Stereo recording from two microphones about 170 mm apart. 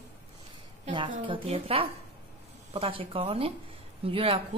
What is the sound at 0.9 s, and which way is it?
A woman's voice, 30° right (ahead or behind).